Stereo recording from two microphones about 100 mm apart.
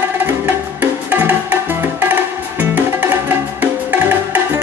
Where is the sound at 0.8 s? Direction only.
15° right (ahead or behind).